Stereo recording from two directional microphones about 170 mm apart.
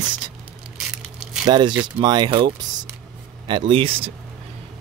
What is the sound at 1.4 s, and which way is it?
Speech, 25° right (ahead or behind).